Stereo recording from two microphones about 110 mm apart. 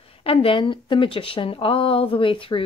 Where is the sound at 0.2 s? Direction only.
60° left (ahead or behind).